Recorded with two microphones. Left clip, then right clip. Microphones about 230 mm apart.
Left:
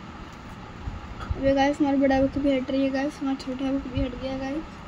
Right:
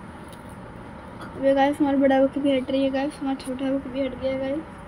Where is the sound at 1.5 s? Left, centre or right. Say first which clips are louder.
Right 2 dB; centre.